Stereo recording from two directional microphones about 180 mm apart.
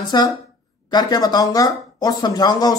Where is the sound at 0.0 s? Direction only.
25° left (ahead or behind).